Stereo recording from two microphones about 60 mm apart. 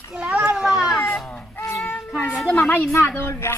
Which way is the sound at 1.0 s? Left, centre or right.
Centre.